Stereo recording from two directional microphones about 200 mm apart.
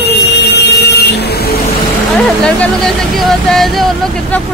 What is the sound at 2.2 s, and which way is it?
Speech, 5° left (ahead or behind).